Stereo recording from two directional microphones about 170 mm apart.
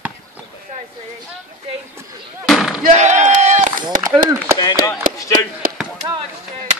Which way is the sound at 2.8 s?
45° right (ahead or behind).